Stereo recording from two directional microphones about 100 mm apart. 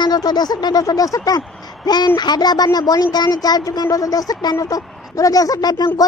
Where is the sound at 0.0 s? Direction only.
40° left (ahead or behind).